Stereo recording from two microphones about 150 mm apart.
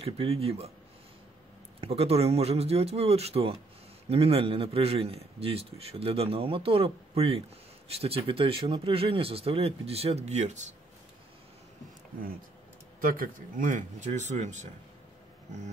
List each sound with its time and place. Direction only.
0.0 s a man's voice: 40° right (ahead or behind)
1.8 s a man's voice: 40° right (ahead or behind)
13.0 s speech: 70° right (ahead or behind); by 14.7 s 55° right (ahead or behind)